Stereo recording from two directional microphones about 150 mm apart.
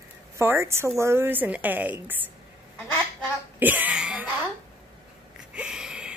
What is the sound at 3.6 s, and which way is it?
Speech, 10° right (ahead or behind).